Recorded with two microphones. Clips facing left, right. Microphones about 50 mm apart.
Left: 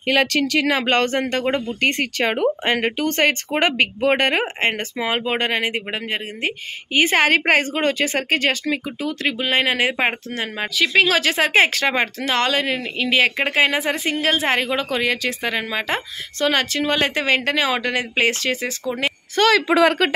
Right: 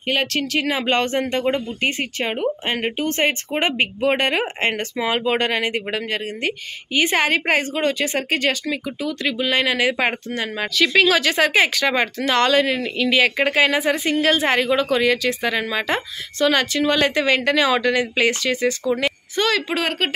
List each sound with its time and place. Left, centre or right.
0.7 s speech: left
1.8 s speech: left
4.1 s a woman's voice: left
6.9 s a woman's voice: left
16.3 s a woman's voice: left
19.4 s speech: left